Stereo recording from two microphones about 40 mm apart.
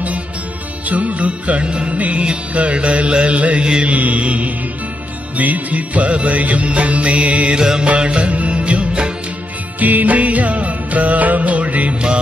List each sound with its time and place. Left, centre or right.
0.8 s music: right
7.5 s music: centre
7.8 s music: right
9.8 s music: right